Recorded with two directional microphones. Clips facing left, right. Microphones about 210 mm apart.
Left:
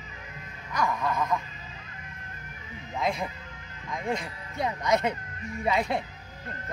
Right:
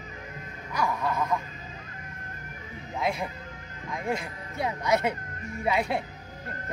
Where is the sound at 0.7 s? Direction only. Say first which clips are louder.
Even; 10° right (ahead or behind).